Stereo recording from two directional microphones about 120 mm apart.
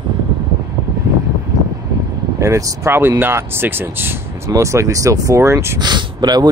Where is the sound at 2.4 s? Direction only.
25° right (ahead or behind).